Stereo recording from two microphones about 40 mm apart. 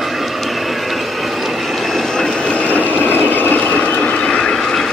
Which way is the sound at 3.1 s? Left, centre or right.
Left.